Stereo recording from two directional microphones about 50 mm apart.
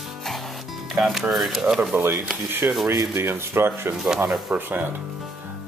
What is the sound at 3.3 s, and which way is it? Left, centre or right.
Speech, right.